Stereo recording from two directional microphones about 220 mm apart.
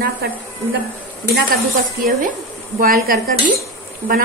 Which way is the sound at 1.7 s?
35° right (ahead or behind).